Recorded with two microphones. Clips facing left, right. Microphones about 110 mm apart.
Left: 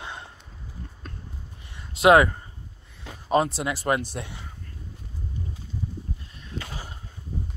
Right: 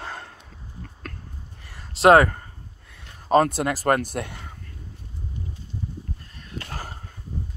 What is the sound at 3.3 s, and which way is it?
A man's voice, 50° right (ahead or behind).